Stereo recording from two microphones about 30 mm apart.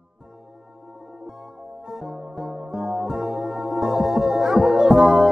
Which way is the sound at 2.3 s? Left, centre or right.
Right.